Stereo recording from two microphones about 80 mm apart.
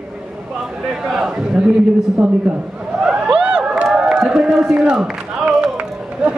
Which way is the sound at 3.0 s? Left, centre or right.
Centre.